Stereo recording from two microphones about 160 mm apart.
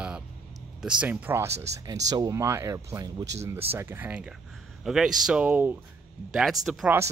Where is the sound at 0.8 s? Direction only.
5° right (ahead or behind).